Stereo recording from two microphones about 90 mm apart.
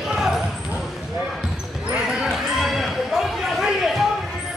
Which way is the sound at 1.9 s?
5° right (ahead or behind).